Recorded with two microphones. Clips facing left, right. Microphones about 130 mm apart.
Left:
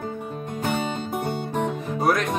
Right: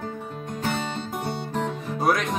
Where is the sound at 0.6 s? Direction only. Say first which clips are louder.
Left 2 dB; 15° left (ahead or behind).